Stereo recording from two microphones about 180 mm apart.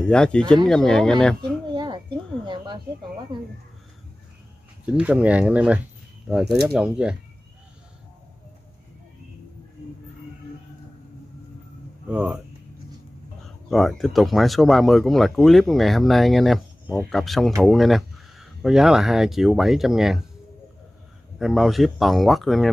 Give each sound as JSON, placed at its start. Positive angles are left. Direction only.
{"t": 0.0, "sound": "speech", "side_deg": 5}
{"t": 1.7, "sound": "a sound", "side_deg": -25}
{"t": 3.3, "sound": "speech", "side_deg": -25}
{"t": 4.8, "sound": "speech", "side_deg": -5}
{"t": 12.1, "sound": "speech", "side_deg": -5}
{"t": 13.7, "sound": "speech", "side_deg": 0}
{"t": 21.4, "sound": "speech", "side_deg": 0}